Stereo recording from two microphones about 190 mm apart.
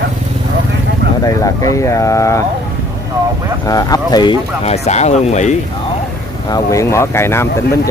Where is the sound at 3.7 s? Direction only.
20° left (ahead or behind).